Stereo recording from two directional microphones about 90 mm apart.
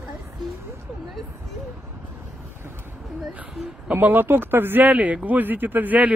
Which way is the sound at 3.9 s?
25° right (ahead or behind).